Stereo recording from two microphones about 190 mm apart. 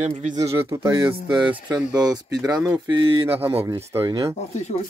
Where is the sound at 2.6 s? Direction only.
25° right (ahead or behind).